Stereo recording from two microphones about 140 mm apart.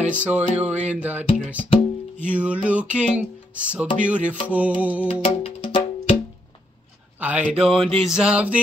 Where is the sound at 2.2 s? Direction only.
10° right (ahead or behind).